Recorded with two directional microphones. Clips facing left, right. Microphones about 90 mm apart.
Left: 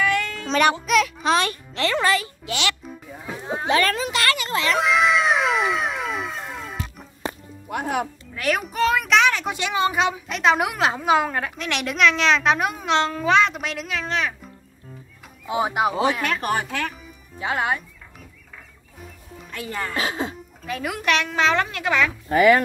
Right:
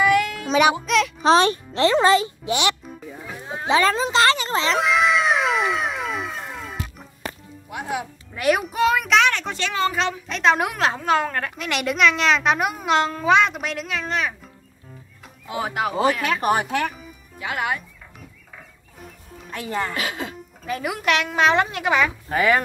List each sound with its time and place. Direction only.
0.0 s music: 10° right (ahead or behind)
1.2 s a child's voice: 30° right (ahead or behind)
4.7 s cat: centre (ahead or behind)
7.7 s speech: 55° left (ahead or behind)
8.4 s a child's voice: 15° right (ahead or behind)
8.6 s a woman's voice: 5° right (ahead or behind); by 10.2 s 15° left (ahead or behind)
10.2 s a woman's voice: 5° left (ahead or behind)
15.4 s speech: 20° left (ahead or behind)
16.0 s a child's voice: centre (ahead or behind)
17.4 s speech: 25° left (ahead or behind)
19.9 s speech: 30° left (ahead or behind)
20.6 s a woman's voice: 5° right (ahead or behind)
21.1 s a child's voice: 15° right (ahead or behind)